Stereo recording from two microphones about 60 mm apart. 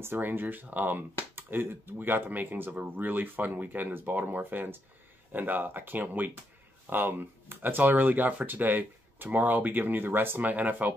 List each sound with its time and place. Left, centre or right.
0.0 s speech: right